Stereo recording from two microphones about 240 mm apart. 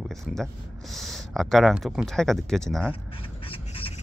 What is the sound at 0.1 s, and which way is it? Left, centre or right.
Speech, centre.